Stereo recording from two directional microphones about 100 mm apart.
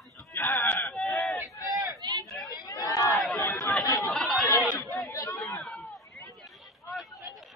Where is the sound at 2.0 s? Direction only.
40° right (ahead or behind).